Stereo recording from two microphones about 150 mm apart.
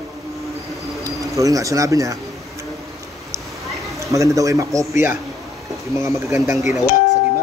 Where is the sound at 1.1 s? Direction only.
20° right (ahead or behind).